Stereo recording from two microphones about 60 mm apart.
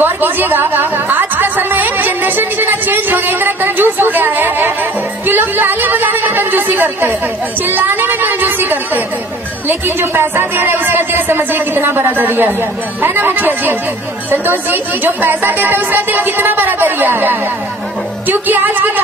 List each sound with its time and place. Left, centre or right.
0.0 s music: right
5.2 s a sound: right
7.6 s a woman's voice: right
18.2 s music: right